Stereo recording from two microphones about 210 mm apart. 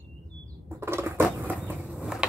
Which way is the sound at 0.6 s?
10° right (ahead or behind).